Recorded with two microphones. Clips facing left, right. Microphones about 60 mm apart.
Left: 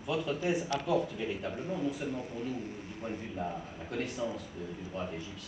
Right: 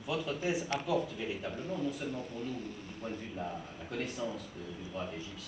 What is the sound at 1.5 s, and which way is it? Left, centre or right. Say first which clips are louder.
Speech: left 2 dB; centre.